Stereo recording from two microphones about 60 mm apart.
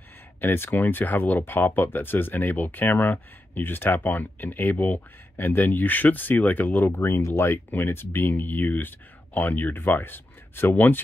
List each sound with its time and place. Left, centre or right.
0.4 s speech: left